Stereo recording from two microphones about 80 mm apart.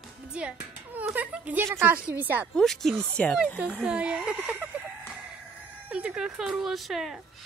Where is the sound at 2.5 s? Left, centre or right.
Centre.